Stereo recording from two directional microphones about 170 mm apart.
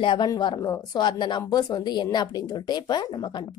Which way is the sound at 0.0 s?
25° left (ahead or behind).